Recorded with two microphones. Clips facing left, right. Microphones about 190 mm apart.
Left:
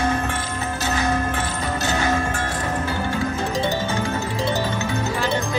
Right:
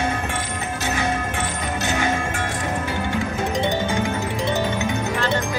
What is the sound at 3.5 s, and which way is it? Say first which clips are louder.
Music: right 3 dB; 20° right (ahead or behind).